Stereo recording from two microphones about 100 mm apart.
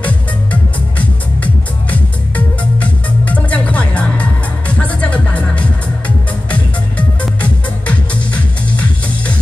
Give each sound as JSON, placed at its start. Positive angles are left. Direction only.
{"t": 0.0, "sound": "music", "side_deg": 15}